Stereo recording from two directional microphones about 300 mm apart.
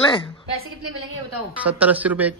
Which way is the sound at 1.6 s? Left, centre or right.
Centre.